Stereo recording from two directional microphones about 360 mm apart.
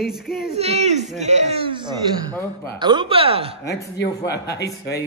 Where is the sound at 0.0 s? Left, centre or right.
Centre.